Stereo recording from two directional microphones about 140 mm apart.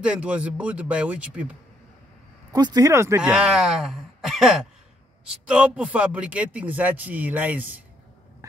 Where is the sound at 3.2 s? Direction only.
5° right (ahead or behind).